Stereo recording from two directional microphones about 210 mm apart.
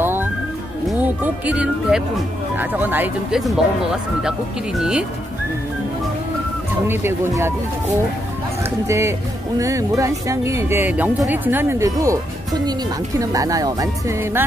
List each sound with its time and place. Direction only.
0.0 s music: 10° right (ahead or behind)
0.8 s speech: 5° right (ahead or behind)
6.9 s speech: 10° right (ahead or behind)
8.6 s speech: 15° right (ahead or behind)